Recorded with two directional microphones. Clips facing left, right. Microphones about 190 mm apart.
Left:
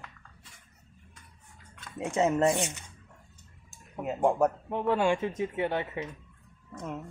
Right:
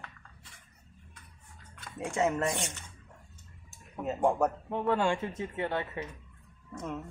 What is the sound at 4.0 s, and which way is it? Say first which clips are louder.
Speech: left 2 dB; 10° left (ahead or behind).